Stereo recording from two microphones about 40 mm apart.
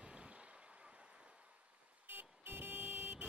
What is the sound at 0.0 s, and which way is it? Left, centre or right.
Vehicle, right.